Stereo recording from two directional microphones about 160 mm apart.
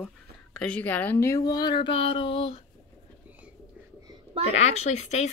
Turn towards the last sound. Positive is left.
turn(degrees=45)  # may be behind; listen again after turning